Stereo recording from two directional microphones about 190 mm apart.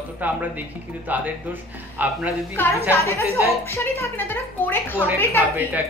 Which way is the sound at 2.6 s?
10° left (ahead or behind).